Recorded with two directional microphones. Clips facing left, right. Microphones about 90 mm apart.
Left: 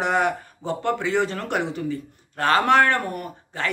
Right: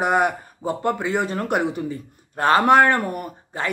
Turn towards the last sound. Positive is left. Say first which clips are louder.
# right 1 dB
turn(degrees=-20)  # may be behind; listen again after turning